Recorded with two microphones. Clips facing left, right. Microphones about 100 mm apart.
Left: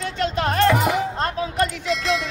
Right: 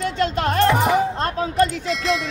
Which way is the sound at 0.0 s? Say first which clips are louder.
Right 2 dB; 40° right (ahead or behind).